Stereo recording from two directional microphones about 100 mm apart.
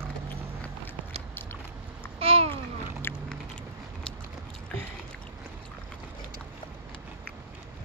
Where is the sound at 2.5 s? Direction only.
20° left (ahead or behind).